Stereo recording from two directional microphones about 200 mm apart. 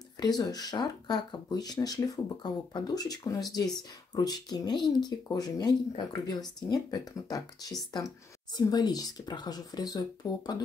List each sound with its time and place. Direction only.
0.2 s speech: 20° left (ahead or behind)